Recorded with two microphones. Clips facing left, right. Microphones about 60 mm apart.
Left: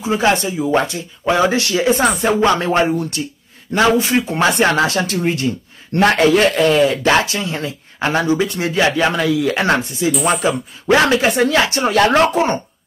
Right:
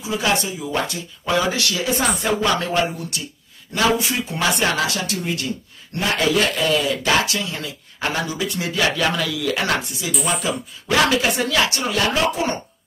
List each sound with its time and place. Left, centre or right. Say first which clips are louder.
0.0 s speech: left 6 dB; left
5.9 s a man's voice: left 9 dB; left
6.2 s speech: left 7 dB; left
11.9 s speech: left 7 dB; left